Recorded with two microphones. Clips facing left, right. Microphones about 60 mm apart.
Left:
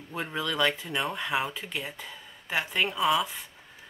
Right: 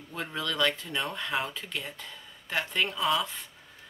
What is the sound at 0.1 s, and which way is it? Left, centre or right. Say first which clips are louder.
Speech: left 2 dB; centre.